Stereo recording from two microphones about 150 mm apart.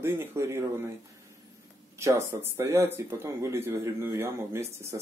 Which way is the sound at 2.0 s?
20° right (ahead or behind).